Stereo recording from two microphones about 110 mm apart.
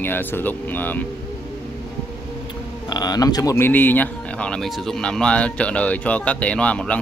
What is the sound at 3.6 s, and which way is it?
Speech, 15° left (ahead or behind).